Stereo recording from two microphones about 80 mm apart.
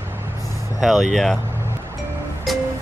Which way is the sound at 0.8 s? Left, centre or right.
Centre.